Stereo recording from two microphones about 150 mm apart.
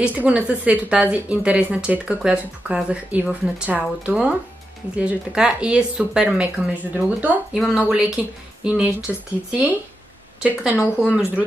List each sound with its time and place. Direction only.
0.0 s speech: 10° right (ahead or behind)
10.8 s speech: 15° left (ahead or behind)